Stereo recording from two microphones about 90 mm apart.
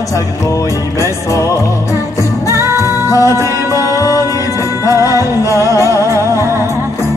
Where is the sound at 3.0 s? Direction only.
40° left (ahead or behind).